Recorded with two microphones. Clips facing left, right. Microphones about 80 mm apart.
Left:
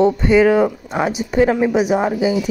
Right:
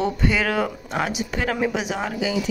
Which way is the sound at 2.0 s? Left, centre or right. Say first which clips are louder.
Left 8 dB; left.